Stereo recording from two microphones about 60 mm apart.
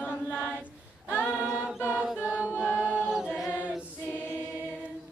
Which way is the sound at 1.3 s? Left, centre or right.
Right.